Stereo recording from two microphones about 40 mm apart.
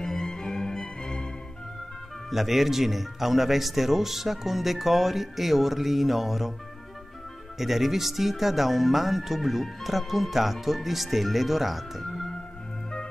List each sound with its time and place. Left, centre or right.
0.0 s music: centre
2.3 s speech: centre
7.5 s speech: centre